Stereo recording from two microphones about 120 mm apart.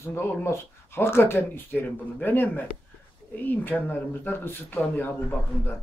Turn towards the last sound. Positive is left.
turn(degrees=15)  # may be behind; listen again after turning